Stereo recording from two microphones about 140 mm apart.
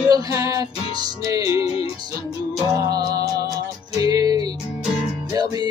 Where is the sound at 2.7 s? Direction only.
25° right (ahead or behind).